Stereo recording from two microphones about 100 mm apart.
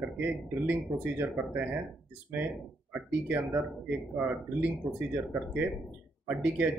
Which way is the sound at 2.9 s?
20° right (ahead or behind).